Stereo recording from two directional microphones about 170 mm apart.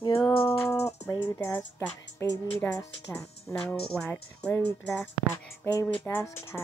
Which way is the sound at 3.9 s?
5° left (ahead or behind).